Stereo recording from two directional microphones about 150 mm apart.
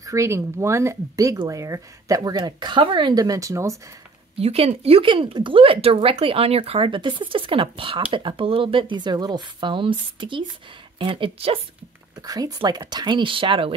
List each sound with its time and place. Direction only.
0.0 s speech: 20° right (ahead or behind)
4.4 s speech: 40° right (ahead or behind)
12.2 s speech: 25° right (ahead or behind)